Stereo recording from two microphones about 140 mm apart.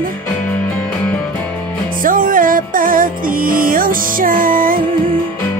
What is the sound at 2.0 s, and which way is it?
Music, 75° right (ahead or behind).